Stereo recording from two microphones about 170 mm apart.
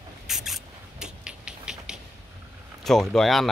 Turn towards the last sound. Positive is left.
turn(degrees=0)  # may be behind; listen again after turning